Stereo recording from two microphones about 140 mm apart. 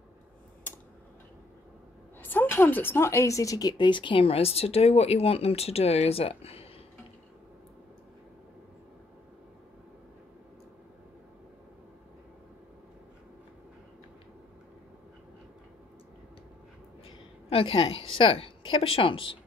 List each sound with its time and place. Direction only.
2.2 s speech: 15° left (ahead or behind); by 6.7 s 45° left (ahead or behind)
17.5 s a woman's voice: 40° left (ahead or behind)